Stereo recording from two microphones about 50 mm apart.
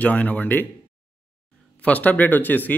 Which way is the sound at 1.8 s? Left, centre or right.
Left.